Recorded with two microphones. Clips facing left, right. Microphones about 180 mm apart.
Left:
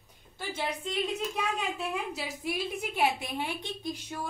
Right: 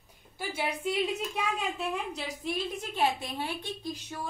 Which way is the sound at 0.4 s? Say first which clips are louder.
Right 1 dB; 10° right (ahead or behind).